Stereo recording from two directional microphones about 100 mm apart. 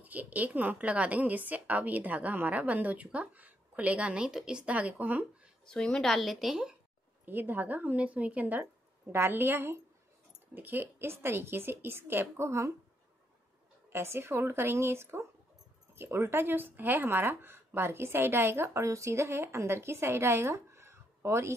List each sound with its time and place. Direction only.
0.0 s a woman's voice: 15° right (ahead or behind)
5.7 s a woman's voice: 5° left (ahead or behind)
7.2 s a woman's voice: 20° right (ahead or behind)
13.8 s speech: 25° right (ahead or behind)